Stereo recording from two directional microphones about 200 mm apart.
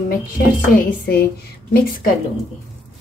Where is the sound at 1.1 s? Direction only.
50° left (ahead or behind).